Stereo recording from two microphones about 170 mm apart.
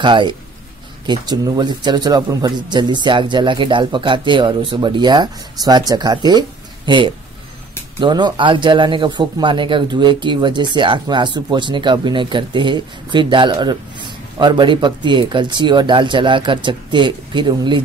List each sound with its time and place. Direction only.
0.0 s speech: 25° right (ahead or behind)
8.0 s speech: 25° right (ahead or behind)